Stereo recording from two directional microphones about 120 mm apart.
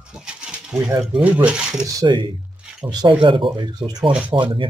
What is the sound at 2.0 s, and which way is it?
Speech, 40° right (ahead or behind).